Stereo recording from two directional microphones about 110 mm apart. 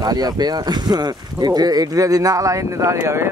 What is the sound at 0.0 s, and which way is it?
Speech, 35° right (ahead or behind).